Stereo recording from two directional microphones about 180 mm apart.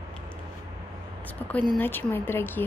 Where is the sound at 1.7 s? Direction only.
10° left (ahead or behind).